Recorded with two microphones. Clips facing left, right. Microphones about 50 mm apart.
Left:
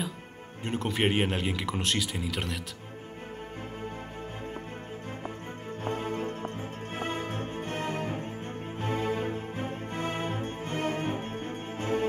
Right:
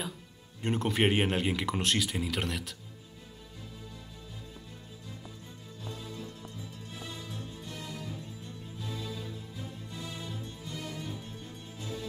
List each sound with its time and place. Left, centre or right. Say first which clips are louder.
0.7 s speech: even; centre
5.9 s music: left 11 dB; left